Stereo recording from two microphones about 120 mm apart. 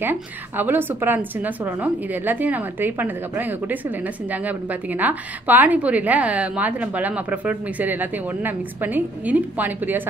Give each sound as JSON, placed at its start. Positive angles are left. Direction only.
{"t": 0.0, "sound": "a woman's voice", "side_deg": -15}